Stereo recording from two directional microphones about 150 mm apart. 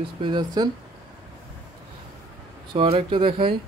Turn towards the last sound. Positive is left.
turn(degrees=-35)  # may be behind; listen again after turning